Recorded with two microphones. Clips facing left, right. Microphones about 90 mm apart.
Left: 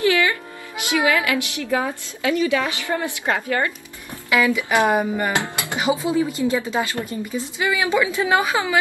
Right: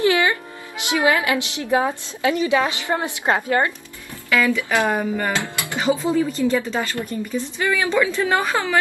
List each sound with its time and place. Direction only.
0.0 s a woman's voice: 25° right (ahead or behind)
4.3 s speech: 15° left (ahead or behind)